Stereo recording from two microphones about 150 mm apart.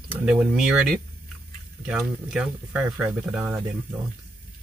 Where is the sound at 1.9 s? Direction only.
10° right (ahead or behind).